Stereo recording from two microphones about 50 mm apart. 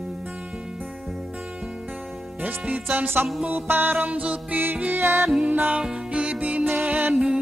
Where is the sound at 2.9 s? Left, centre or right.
Right.